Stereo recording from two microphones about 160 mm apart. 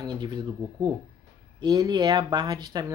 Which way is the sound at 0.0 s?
25° right (ahead or behind).